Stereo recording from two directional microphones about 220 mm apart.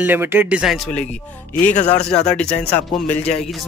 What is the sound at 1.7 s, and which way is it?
Speech, 30° left (ahead or behind).